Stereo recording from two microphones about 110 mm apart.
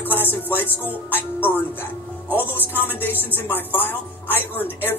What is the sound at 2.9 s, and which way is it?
Speech, 20° left (ahead or behind).